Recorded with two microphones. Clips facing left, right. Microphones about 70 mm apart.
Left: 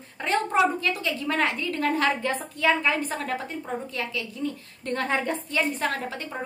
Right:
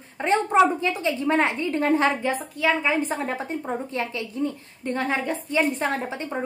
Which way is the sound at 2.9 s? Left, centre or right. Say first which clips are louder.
Right 3 dB; right.